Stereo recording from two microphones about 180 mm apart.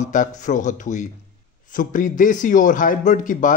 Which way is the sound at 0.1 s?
45° left (ahead or behind).